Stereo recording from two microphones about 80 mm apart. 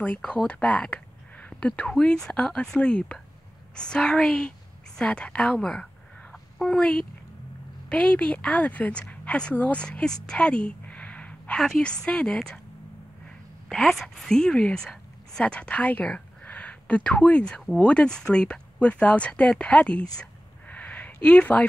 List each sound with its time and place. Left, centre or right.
0.0 s a woman's voice: centre
13.7 s a woman's voice: centre
20.2 s a sound: centre